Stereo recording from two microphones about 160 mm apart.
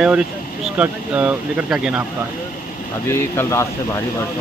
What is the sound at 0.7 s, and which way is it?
Speech, 10° right (ahead or behind).